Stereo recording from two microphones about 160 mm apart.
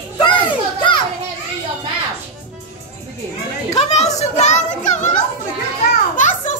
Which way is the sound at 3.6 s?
45° left (ahead or behind).